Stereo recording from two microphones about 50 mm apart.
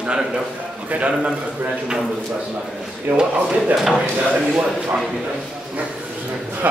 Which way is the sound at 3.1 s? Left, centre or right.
Right.